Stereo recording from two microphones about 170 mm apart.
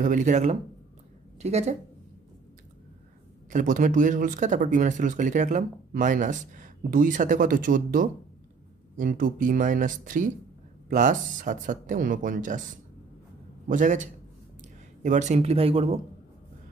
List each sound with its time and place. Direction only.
0.0 s speech: 50° right (ahead or behind)
3.4 s speech: 50° right (ahead or behind)
13.7 s speech: 45° right (ahead or behind)
15.0 s speech: 45° right (ahead or behind)